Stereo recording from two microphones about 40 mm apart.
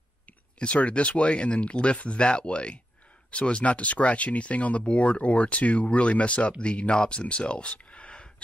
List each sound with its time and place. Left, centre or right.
0.6 s speech: left